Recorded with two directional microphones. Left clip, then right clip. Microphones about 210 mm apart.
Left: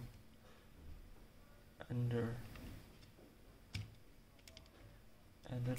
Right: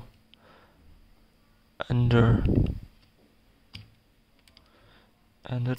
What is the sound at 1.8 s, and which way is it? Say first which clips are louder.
Speech: right 18 dB; 50° right (ahead or behind).